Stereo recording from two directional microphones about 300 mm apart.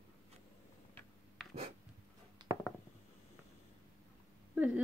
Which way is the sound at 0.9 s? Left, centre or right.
Centre.